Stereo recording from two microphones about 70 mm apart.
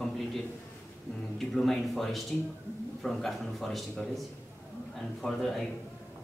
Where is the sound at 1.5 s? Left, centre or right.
Centre.